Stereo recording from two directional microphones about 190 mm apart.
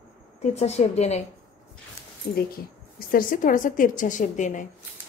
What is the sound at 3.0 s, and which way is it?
A woman's voice, 50° left (ahead or behind).